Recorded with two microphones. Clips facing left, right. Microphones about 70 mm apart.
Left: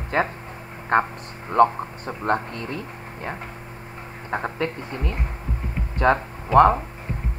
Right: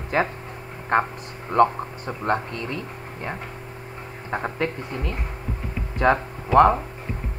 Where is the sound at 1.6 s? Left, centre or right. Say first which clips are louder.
Left 1 dB; left.